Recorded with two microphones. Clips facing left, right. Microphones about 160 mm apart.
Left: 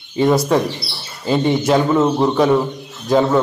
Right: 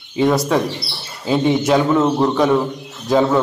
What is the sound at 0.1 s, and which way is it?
A man's voice, centre (ahead or behind).